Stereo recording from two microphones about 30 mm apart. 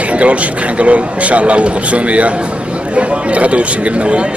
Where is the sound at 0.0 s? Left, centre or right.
Right.